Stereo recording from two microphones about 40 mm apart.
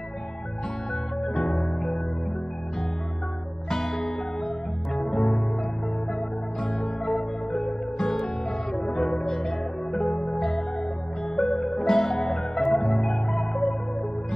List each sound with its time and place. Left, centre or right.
1.2 s music: centre
3.6 s music: centre
6.6 s music: centre
11.3 s music: centre